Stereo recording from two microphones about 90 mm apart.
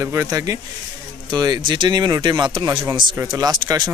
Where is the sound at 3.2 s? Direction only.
50° right (ahead or behind).